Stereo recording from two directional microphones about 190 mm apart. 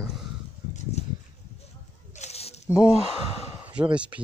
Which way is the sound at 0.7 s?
35° left (ahead or behind).